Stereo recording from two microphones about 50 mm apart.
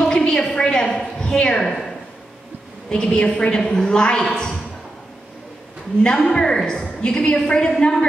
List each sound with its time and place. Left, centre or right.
0.3 s a sound: centre
2.9 s a woman's voice: centre
6.0 s a woman's voice: centre